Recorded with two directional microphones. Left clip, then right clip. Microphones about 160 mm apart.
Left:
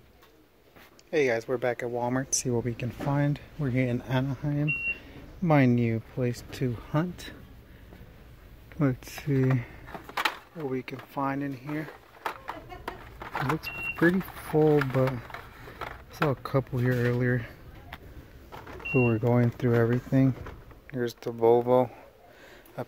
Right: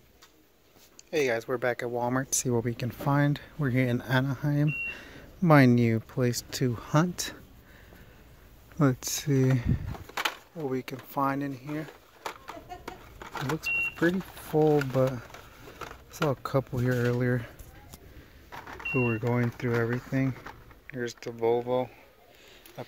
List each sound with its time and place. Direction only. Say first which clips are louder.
1.1 s speech: left 2 dB; 5° right (ahead or behind); by 7.3 s 50° right (ahead or behind)
8.7 s speech: right 3 dB; 30° right (ahead or behind)
10.1 s a sound: left 2 dB; 15° right (ahead or behind)
10.7 s speech: right 1 dB; 30° right (ahead or behind)
12.8 s vehicle: left 4 dB; 20° right (ahead or behind)
13.9 s speech: left 3 dB; 15° right (ahead or behind)
18.9 s speech: left 4 dB; centre (ahead or behind)
21.5 s speech: left 6 dB; 30° left (ahead or behind)
22.8 s a sound: left 5 dB; 15° left (ahead or behind)